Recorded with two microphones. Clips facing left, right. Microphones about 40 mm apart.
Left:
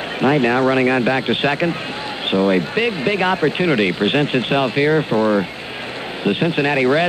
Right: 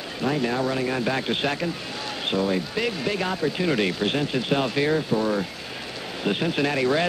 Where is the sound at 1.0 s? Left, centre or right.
Left.